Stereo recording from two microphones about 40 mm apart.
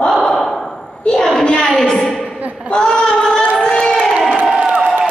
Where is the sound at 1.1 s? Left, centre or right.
Left.